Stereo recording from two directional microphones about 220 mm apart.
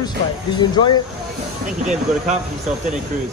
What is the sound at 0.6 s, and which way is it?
Speech, 20° left (ahead or behind).